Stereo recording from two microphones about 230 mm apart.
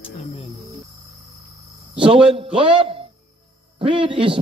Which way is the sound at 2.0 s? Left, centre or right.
Right.